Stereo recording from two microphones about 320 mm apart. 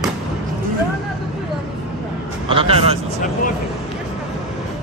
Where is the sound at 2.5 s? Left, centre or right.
Centre.